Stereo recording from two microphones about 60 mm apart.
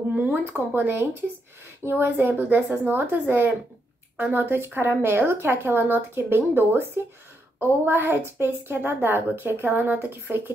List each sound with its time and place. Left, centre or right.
0.1 s a woman's voice: right